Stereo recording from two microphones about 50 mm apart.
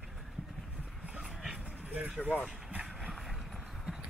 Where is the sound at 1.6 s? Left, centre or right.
Right.